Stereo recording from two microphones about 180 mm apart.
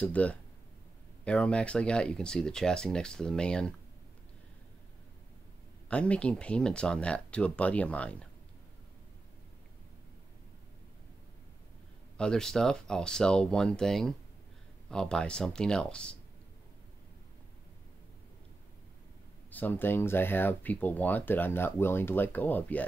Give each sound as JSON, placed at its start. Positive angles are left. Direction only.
{"t": 0.0, "sound": "speech", "side_deg": 10}
{"t": 5.9, "sound": "speech", "side_deg": 5}
{"t": 12.2, "sound": "speech", "side_deg": 5}
{"t": 19.5, "sound": "speech", "side_deg": 10}